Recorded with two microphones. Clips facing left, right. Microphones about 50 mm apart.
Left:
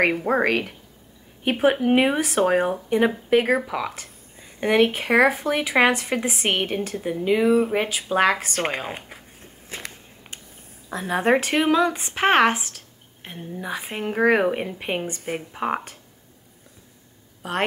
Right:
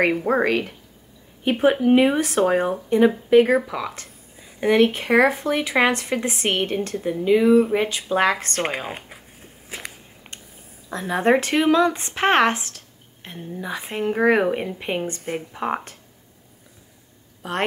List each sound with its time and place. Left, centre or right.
0.0 s a woman's voice: centre
0.4 s speech: left; by 9.9 s centre
10.9 s speech: centre
17.4 s a woman's voice: centre